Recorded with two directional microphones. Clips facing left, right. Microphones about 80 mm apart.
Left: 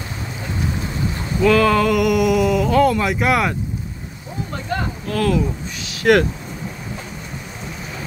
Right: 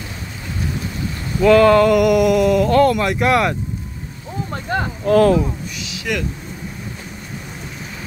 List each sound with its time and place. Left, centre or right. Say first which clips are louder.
1.4 s speech: right 4 dB; centre
5.0 s speech: right 8 dB; right
5.8 s a sound: left 11 dB; left